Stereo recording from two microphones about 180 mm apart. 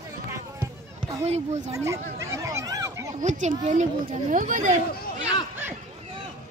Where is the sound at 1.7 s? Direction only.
15° right (ahead or behind).